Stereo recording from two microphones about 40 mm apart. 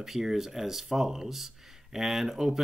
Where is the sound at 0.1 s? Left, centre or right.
Centre.